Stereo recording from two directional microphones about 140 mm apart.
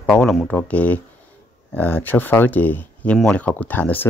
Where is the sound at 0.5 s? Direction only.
10° left (ahead or behind).